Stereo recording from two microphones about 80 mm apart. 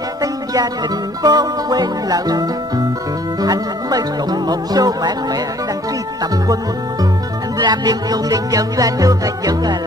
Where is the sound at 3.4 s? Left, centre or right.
Right.